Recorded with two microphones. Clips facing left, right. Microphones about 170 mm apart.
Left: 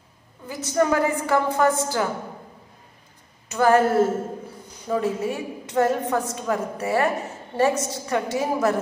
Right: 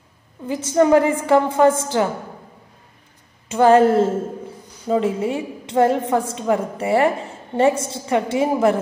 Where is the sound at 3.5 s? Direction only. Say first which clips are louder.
Right 5 dB; 25° right (ahead or behind).